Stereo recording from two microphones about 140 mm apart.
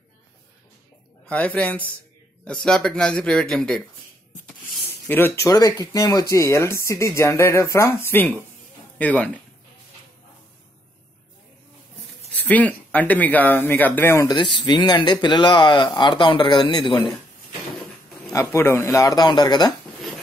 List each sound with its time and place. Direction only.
1.2 s speech: 10° left (ahead or behind)
4.8 s speech: 15° left (ahead or behind)
12.4 s speech: 10° left (ahead or behind)
14.2 s speech: 30° left (ahead or behind)
18.3 s speech: 20° left (ahead or behind)